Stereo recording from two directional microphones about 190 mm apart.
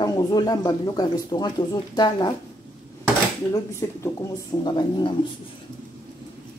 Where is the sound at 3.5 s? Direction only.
15° left (ahead or behind).